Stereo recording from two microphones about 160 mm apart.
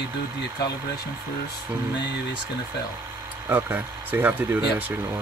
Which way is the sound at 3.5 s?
10° right (ahead or behind).